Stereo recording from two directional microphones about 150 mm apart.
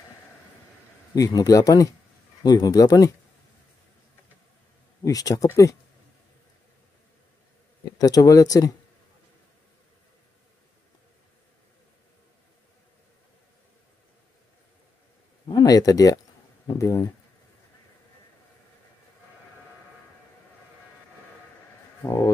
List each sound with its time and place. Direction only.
1.1 s speech: 25° left (ahead or behind)
5.0 s speech: 25° left (ahead or behind)
8.0 s speech: 25° left (ahead or behind)
15.4 s speech: 25° left (ahead or behind)
22.0 s speech: 20° left (ahead or behind)